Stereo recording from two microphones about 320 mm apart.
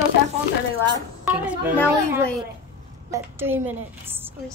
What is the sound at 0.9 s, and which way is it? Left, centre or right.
A child's voice, centre.